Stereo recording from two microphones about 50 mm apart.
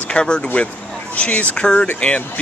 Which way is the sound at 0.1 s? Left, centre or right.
Centre.